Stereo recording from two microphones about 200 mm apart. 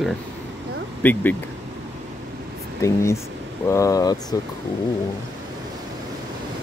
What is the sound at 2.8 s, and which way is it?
Speech, 15° left (ahead or behind).